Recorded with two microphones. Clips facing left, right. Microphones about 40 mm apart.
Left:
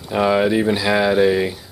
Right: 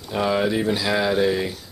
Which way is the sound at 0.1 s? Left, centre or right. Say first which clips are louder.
Left 5 dB; centre.